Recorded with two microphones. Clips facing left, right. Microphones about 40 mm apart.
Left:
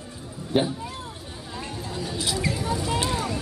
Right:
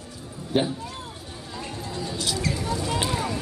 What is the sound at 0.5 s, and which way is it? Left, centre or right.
Speech, centre.